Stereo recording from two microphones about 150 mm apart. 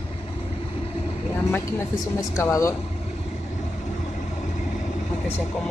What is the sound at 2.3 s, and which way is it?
Speech, 20° left (ahead or behind).